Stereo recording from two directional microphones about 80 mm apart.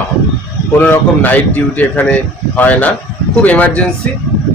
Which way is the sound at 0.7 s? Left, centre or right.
Left.